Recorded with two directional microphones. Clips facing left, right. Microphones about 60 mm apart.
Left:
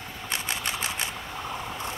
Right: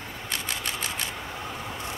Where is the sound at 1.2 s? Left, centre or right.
Centre.